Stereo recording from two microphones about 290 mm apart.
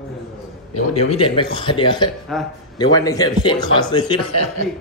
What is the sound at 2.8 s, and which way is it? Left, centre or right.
A man's voice, centre.